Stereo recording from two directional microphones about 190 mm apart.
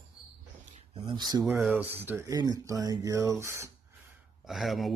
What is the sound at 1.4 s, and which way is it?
Speech, 5° right (ahead or behind).